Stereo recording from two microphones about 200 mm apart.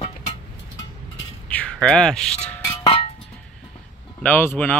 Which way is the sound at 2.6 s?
20° left (ahead or behind).